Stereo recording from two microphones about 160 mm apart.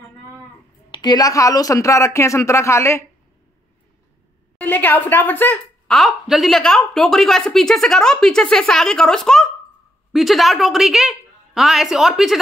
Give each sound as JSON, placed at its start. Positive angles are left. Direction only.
{"t": 0.9, "sound": "speech", "side_deg": 25}
{"t": 4.6, "sound": "a woman's voice", "side_deg": 10}